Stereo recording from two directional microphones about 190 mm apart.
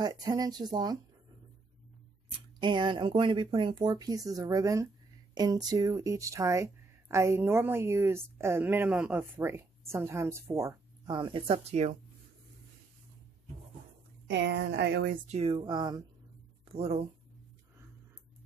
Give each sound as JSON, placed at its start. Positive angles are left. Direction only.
{"t": 0.0, "sound": "speech", "side_deg": -20}
{"t": 2.6, "sound": "speech", "side_deg": -25}
{"t": 14.2, "sound": "speech", "side_deg": -70}
{"t": 15.2, "sound": "speech", "side_deg": -30}